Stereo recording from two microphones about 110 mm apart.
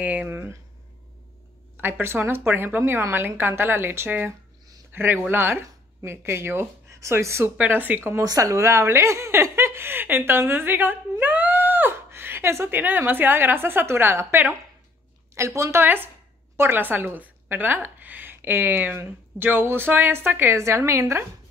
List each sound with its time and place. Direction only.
0.0 s speech: 15° right (ahead or behind)
1.8 s speech: 20° right (ahead or behind)
4.3 s a sound: 25° right (ahead or behind)
5.3 s speech: 20° right (ahead or behind)
8.2 s speech: 30° right (ahead or behind)